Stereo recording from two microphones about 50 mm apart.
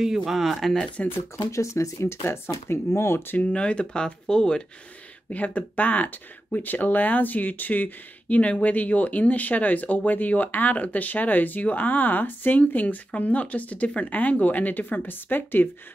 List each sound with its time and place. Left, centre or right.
0.2 s speech: centre
1.3 s speech: left
3.3 s speech: left
5.3 s speech: left